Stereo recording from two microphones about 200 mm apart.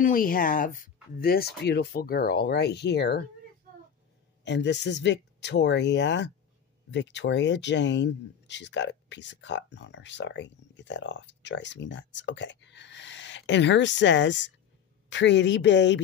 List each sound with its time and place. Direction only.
0.0 s speech: 45° left (ahead or behind)
4.5 s speech: 60° left (ahead or behind)